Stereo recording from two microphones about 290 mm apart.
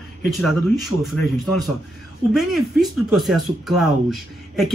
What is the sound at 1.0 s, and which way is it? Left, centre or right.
Speech, centre.